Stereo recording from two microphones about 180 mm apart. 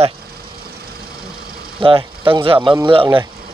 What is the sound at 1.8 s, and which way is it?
Speech, 30° right (ahead or behind).